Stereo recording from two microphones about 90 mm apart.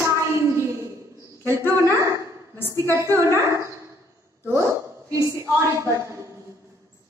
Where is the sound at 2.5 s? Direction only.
25° left (ahead or behind).